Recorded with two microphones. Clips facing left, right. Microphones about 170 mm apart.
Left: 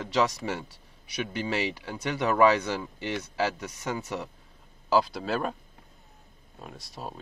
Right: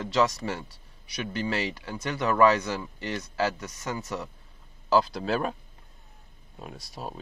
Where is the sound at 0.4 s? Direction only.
15° left (ahead or behind); by 5.6 s centre (ahead or behind).